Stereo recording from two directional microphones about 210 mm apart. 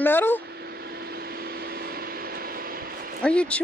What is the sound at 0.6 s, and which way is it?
Vehicle, 50° right (ahead or behind).